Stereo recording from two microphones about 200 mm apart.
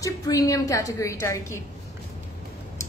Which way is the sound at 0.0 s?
15° left (ahead or behind).